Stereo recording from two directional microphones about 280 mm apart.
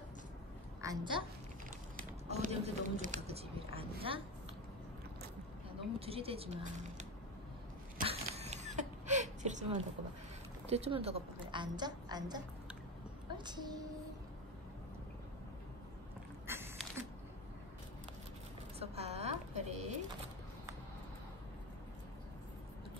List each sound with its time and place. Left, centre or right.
0.7 s a woman's voice: centre
2.2 s speech: right
5.9 s speech: right
8.0 s a sound: right
10.7 s a woman's voice: right
13.5 s a woman's voice: centre
16.4 s creak: centre
18.8 s a sound: right